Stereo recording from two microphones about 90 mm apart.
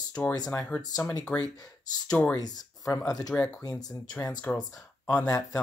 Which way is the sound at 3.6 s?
45° left (ahead or behind).